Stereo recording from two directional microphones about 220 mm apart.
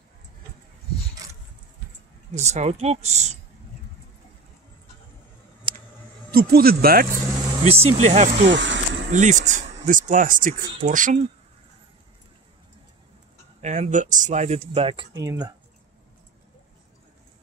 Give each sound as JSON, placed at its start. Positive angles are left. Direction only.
{"t": 2.3, "sound": "speech", "side_deg": -30}
{"t": 6.3, "sound": "speech", "side_deg": -45}
{"t": 7.6, "sound": "speech", "side_deg": -25}
{"t": 8.5, "sound": "speech", "side_deg": -55}
{"t": 9.1, "sound": "speech", "side_deg": -35}
{"t": 13.6, "sound": "speech", "side_deg": -30}